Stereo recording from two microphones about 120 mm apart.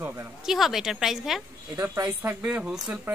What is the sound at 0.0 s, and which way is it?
Speech, 20° right (ahead or behind).